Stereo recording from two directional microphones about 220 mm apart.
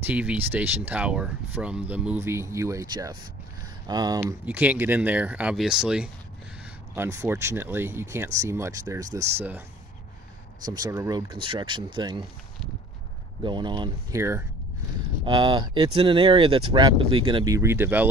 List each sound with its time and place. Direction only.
0.0 s speech: 5° right (ahead or behind)
10.6 s speech: 15° right (ahead or behind)
13.4 s speech: 20° right (ahead or behind)